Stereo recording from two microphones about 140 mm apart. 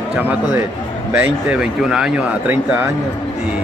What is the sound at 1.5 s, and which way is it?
Speech, 5° right (ahead or behind).